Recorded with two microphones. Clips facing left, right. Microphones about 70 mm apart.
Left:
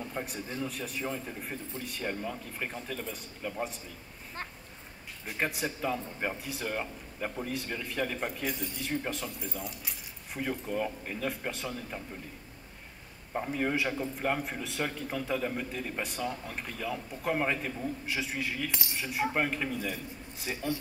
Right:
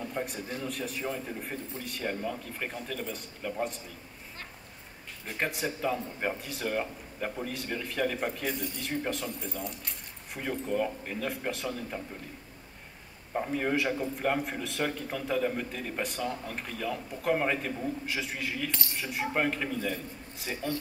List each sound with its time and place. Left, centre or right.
0.0 s a sound: centre
0.7 s a man's voice: centre
5.2 s a man's voice: centre
13.3 s a man's voice: centre
18.7 s cutlery: centre
18.9 s a man's voice: centre